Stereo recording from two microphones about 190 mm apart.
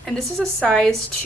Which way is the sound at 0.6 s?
5° left (ahead or behind).